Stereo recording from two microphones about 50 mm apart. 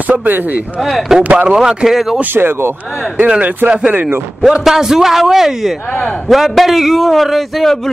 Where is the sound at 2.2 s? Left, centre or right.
Right.